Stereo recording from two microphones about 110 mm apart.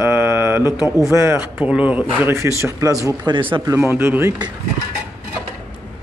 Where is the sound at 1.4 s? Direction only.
10° right (ahead or behind).